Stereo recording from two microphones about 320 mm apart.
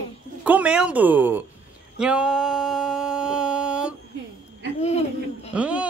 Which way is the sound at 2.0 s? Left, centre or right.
Centre.